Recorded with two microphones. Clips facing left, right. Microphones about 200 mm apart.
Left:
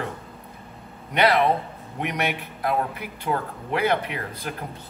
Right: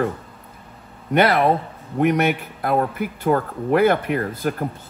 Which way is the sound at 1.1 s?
50° right (ahead or behind).